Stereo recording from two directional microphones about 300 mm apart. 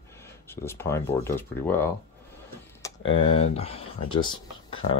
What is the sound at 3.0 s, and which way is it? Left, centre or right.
Speech, left.